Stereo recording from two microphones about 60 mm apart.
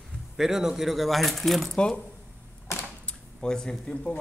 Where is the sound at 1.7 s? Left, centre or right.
Centre.